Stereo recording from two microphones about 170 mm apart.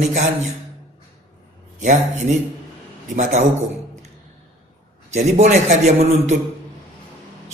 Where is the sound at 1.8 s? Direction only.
45° right (ahead or behind).